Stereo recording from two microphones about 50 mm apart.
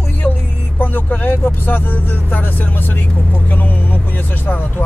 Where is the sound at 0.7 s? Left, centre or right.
Left.